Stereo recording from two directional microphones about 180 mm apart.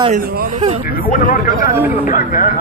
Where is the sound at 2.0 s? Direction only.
50° left (ahead or behind).